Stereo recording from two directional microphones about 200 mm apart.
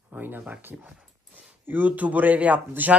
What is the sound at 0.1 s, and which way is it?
A man's voice, 10° right (ahead or behind).